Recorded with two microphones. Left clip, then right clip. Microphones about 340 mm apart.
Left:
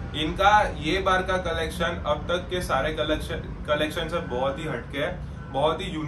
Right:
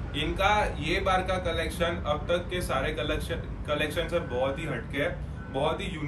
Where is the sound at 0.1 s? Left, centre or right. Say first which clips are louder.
Left 6 dB; centre.